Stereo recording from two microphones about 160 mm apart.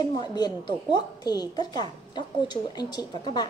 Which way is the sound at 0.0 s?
25° left (ahead or behind).